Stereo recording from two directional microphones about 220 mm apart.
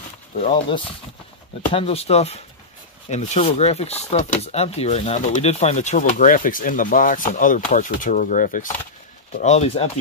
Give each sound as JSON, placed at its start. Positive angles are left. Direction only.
{"t": 0.4, "sound": "speech", "side_deg": 25}